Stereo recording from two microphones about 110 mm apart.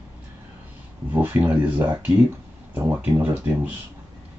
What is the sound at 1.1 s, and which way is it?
Speech, 15° right (ahead or behind).